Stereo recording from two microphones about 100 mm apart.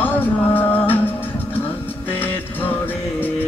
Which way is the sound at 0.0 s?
20° left (ahead or behind).